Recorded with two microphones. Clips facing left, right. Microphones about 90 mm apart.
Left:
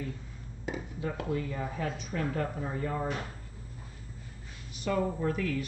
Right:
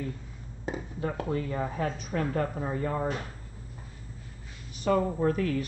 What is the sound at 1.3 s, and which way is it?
Speech, 40° right (ahead or behind).